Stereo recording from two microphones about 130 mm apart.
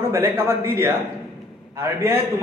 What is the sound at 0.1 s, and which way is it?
A man's voice, 15° right (ahead or behind).